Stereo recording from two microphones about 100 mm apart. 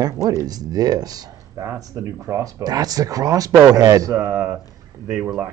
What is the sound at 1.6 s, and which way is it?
Speech, 25° right (ahead or behind).